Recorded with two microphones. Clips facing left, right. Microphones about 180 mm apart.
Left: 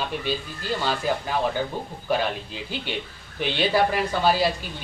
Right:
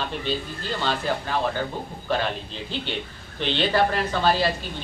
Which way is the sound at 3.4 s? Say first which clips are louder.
Even; 10° left (ahead or behind).